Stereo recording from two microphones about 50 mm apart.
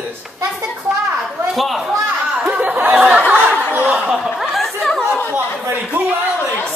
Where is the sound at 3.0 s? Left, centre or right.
Right.